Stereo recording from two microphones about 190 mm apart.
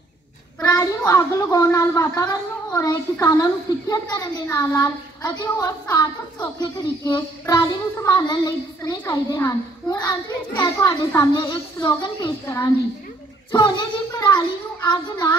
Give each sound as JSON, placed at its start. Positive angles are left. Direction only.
{"t": 0.6, "sound": "a child's voice", "side_deg": 15}